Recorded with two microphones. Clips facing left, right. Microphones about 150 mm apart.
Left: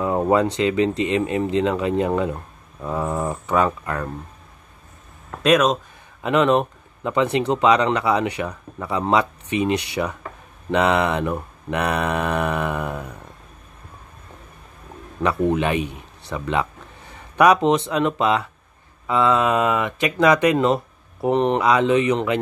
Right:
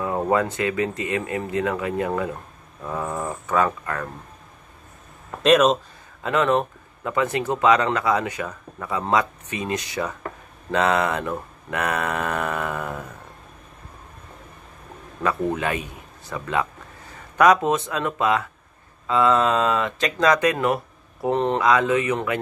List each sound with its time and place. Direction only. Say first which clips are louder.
0.0 s a sound: left 3 dB; 20° left (ahead or behind)
0.6 s speech: left 5 dB; 20° left (ahead or behind)
5.3 s speech: right 1 dB; centre (ahead or behind); by 9.8 s 20° left (ahead or behind)
10.0 s speech: left 2 dB; 10° left (ahead or behind)
15.2 s speech: left 4 dB; 20° left (ahead or behind)